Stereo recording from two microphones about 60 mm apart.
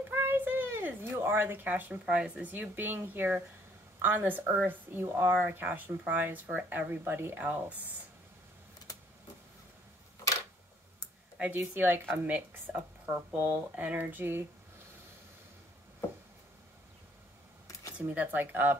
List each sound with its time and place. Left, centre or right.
0.1 s a sound: right
2.0 s speech: centre
7.1 s speech: right
11.3 s a woman's voice: right
11.7 s speech: right
13.4 s speech: right
13.7 s speech: right
17.9 s speech: right